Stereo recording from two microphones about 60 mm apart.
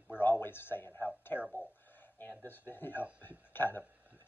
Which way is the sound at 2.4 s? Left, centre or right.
Left.